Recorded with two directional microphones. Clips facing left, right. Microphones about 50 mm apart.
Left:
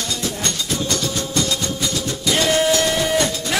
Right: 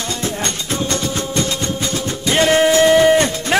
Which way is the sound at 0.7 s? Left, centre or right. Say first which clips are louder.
Right 4 dB; right.